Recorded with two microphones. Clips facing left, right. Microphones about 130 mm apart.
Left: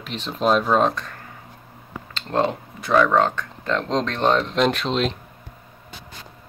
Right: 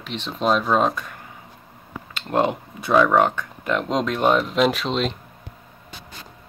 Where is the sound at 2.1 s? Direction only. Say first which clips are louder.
Right 1 dB; 15° right (ahead or behind); by 5.2 s centre (ahead or behind).